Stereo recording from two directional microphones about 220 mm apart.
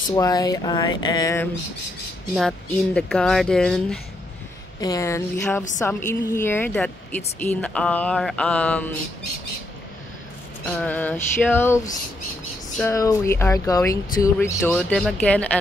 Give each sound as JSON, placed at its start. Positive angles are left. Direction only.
{"t": 0.1, "sound": "speech", "side_deg": 15}
{"t": 2.3, "sound": "speech", "side_deg": 5}
{"t": 4.7, "sound": "speech", "side_deg": 15}
{"t": 10.6, "sound": "speech", "side_deg": 5}